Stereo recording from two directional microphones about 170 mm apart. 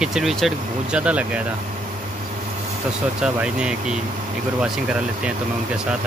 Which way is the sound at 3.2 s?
5° right (ahead or behind).